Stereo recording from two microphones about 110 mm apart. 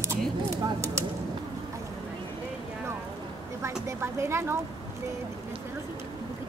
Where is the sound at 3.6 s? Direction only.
25° right (ahead or behind).